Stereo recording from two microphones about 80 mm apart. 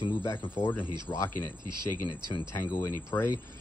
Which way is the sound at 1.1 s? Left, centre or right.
Left.